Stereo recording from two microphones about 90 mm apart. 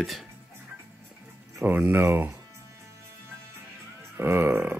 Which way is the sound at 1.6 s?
20° right (ahead or behind).